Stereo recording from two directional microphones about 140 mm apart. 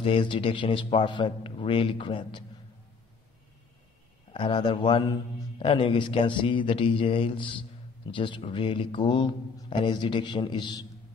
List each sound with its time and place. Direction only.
0.0 s speech: 40° left (ahead or behind)
4.3 s speech: 35° left (ahead or behind)